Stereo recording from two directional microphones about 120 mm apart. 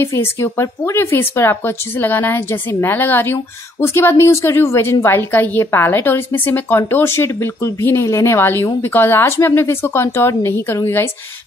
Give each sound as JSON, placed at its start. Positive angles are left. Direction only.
{"t": 0.0, "sound": "speech", "side_deg": 20}